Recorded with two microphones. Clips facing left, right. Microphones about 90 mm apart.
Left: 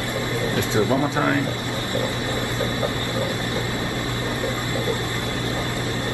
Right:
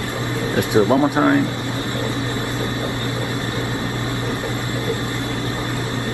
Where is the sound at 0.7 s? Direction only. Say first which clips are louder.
Right 7 dB; 20° right (ahead or behind).